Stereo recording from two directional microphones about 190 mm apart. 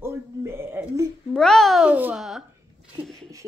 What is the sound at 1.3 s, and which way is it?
A child's voice, 5° left (ahead or behind).